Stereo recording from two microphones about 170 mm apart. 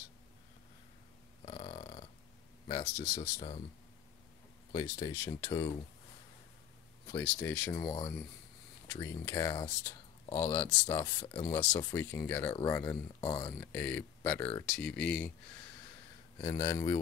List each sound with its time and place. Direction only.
1.4 s burping: 30° left (ahead or behind)
2.7 s speech: 25° left (ahead or behind)
4.7 s speech: 25° left (ahead or behind)
7.1 s speech: 15° left (ahead or behind)
7.8 s speech: 25° left (ahead or behind)
13.6 s speech: 10° left (ahead or behind)
16.3 s speech: 20° left (ahead or behind)